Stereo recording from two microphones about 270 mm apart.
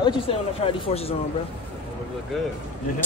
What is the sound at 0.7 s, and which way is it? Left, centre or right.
Speech, left.